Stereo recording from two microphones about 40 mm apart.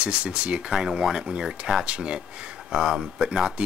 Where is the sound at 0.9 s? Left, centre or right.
Centre.